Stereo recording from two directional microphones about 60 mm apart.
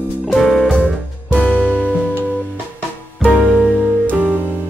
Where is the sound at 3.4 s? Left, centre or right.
Right.